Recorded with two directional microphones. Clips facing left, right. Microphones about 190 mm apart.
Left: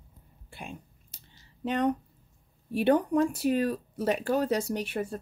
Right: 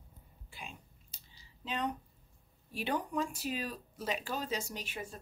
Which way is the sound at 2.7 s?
60° left (ahead or behind).